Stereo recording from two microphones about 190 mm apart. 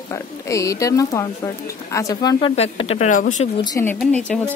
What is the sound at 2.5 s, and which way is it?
Speech, 30° left (ahead or behind).